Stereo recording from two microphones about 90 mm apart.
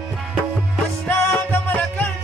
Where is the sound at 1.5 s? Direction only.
20° left (ahead or behind).